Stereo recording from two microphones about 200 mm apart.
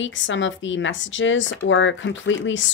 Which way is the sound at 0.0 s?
70° left (ahead or behind).